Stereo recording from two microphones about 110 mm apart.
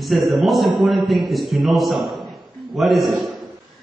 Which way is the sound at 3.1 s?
45° right (ahead or behind).